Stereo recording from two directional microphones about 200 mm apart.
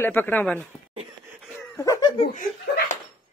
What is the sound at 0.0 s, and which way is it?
Speech, 10° left (ahead or behind).